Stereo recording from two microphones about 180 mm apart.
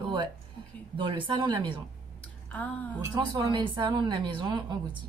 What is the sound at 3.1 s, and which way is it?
A woman's voice, 25° right (ahead or behind).